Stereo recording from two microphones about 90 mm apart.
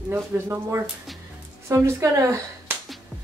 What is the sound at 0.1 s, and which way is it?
Speech, 25° right (ahead or behind).